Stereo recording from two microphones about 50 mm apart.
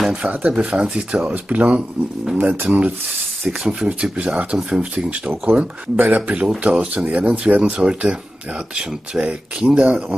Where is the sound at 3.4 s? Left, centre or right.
Centre.